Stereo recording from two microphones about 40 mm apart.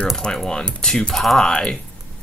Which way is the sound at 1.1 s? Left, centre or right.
Centre.